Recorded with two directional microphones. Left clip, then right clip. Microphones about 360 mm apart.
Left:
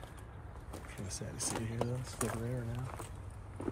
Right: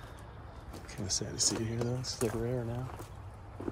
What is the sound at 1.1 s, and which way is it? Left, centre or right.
Speech, centre.